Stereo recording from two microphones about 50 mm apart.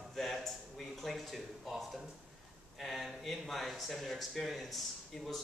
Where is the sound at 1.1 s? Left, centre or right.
Centre.